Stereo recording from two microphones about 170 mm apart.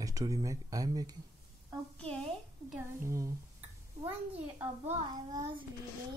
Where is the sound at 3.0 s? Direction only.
15° right (ahead or behind).